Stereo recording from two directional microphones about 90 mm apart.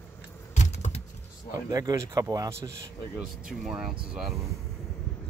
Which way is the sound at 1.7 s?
40° right (ahead or behind).